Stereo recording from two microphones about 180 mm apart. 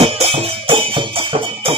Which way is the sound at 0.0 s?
35° right (ahead or behind).